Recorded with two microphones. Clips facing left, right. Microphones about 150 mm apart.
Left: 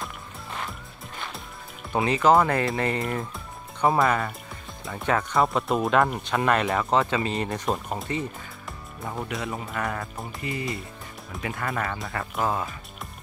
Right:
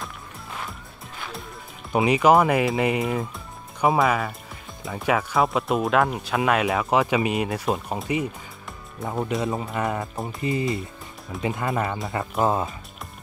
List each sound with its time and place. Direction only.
0.0 s music: centre (ahead or behind)
1.9 s speech: 15° right (ahead or behind)
9.0 s speech: 20° right (ahead or behind)